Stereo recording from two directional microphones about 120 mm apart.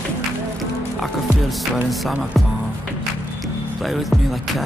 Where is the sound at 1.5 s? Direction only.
Centre (ahead or behind).